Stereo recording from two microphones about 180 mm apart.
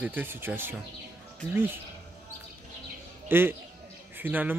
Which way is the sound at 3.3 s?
10° right (ahead or behind).